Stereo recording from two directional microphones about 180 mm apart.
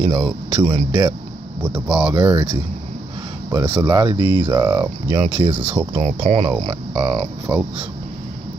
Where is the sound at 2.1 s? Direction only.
25° right (ahead or behind).